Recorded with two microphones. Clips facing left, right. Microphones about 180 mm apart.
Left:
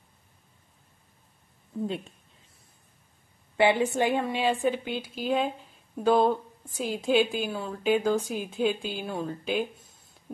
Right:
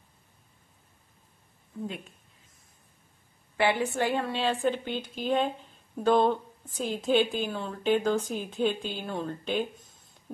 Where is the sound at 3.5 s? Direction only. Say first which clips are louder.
Left 3 dB; 20° left (ahead or behind).